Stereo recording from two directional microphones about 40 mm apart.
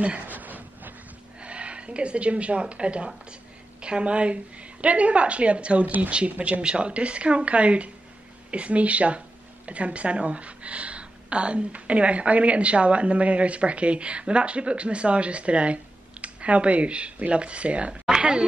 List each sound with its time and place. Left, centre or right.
0.0 s speech: right
0.3 s a sound: right
1.4 s speech: right
6.6 s a woman's voice: right